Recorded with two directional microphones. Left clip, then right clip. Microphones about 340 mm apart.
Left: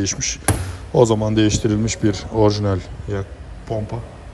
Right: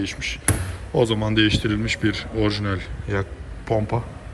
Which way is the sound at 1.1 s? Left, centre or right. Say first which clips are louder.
Left 2 dB; centre.